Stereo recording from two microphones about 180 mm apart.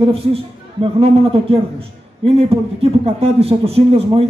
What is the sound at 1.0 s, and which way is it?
A man's voice, 30° right (ahead or behind).